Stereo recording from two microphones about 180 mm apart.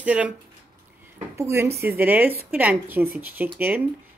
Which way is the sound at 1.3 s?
15° right (ahead or behind).